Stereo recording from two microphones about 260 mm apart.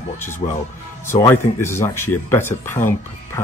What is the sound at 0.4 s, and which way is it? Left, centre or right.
Speech, left.